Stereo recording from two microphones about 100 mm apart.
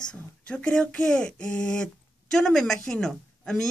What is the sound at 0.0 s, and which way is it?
Speech, 10° left (ahead or behind).